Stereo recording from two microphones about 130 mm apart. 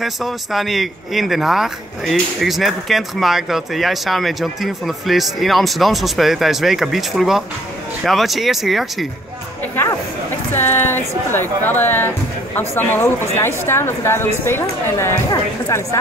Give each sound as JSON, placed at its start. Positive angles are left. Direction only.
{"t": 0.0, "sound": "speech", "side_deg": 0}
{"t": 10.5, "sound": "a woman's voice", "side_deg": 15}